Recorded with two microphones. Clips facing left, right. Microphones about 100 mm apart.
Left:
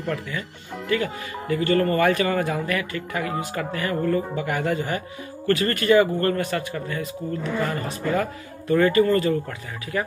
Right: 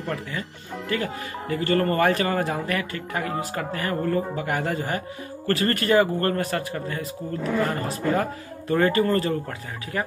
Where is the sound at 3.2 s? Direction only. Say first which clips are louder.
Even; centre (ahead or behind).